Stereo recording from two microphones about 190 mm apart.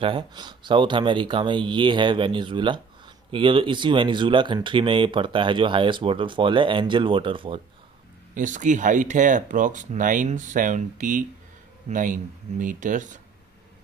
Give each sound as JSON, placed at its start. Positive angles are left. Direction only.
{"t": 0.0, "sound": "speech", "side_deg": -25}
{"t": 8.4, "sound": "speech", "side_deg": -40}